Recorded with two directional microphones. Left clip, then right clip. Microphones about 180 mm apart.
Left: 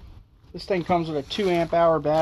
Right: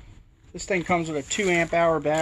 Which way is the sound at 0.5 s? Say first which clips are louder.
Left 1 dB; 25° left (ahead or behind).